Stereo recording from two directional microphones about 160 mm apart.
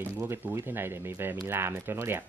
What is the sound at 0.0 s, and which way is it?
Speech, 15° right (ahead or behind).